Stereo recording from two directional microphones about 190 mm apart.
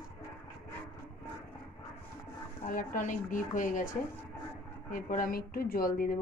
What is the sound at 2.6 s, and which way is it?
A woman's voice, 45° left (ahead or behind).